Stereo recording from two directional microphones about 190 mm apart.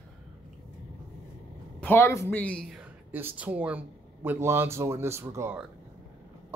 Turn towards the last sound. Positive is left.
turn(degrees=-15)  # may be behind; listen again after turning